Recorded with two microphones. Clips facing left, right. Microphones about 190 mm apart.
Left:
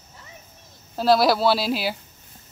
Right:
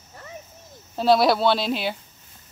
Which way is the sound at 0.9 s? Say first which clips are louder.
Even; centre (ahead or behind).